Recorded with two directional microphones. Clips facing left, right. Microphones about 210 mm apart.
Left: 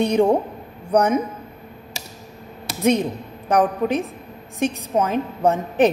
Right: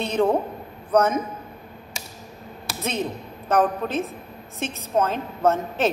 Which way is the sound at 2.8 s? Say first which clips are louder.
Left 9 dB; 15° left (ahead or behind).